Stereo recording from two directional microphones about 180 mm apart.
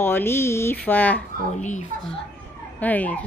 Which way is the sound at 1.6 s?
45° left (ahead or behind).